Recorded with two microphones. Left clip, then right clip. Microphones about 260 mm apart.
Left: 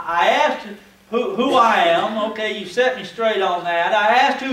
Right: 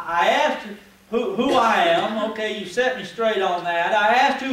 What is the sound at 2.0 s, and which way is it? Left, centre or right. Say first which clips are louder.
Speech: left 2 dB; left.